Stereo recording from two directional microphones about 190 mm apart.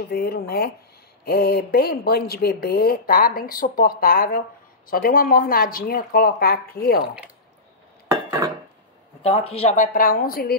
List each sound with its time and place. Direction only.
0.1 s speech: 55° left (ahead or behind)
9.2 s a woman's voice: 30° left (ahead or behind); by 10.5 s 50° left (ahead or behind)